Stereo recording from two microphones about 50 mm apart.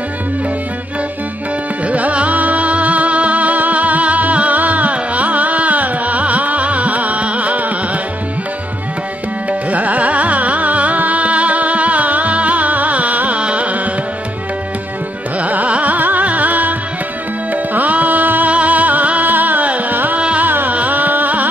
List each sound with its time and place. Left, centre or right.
1.9 s music: right
9.5 s carnatic music: right
15.4 s carnatic music: right
17.5 s music: right
20.2 s music: right
20.4 s music: right